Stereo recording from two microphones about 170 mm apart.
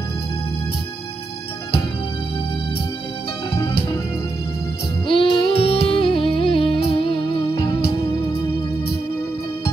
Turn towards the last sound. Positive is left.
turn(degrees=30)  # may be behind; listen again after turning